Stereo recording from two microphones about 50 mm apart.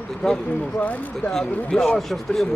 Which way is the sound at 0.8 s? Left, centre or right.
Left.